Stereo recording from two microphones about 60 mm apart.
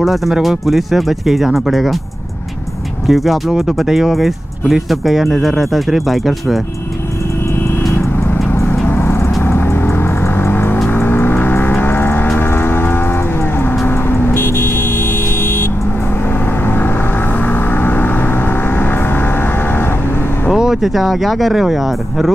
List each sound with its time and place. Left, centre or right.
0.0 s speech: centre
3.1 s speech: centre
7.9 s vehicle: left
20.5 s speech: centre